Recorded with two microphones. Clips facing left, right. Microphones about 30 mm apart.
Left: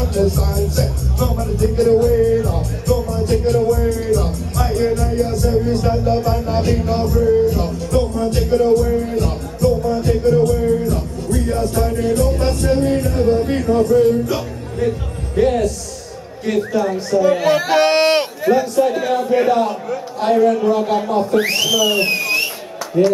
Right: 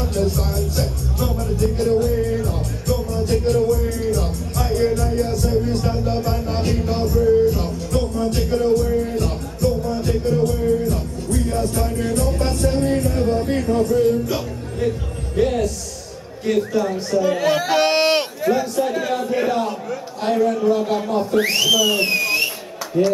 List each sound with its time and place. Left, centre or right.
0.0 s music: centre
11.2 s music: centre
16.4 s speech: centre
21.8 s speech: left
22.1 s a sound: centre
23.0 s a man's voice: centre